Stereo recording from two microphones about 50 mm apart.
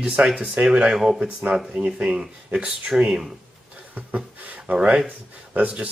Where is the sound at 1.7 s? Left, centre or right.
Right.